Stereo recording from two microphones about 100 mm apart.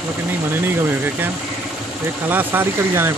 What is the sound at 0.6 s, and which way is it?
Speech, 20° right (ahead or behind).